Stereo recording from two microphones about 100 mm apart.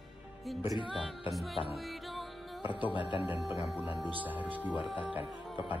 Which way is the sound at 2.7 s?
15° right (ahead or behind).